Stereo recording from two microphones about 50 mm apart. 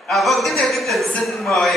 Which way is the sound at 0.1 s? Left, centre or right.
Centre.